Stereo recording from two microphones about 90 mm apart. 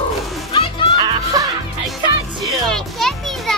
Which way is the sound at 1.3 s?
45° right (ahead or behind).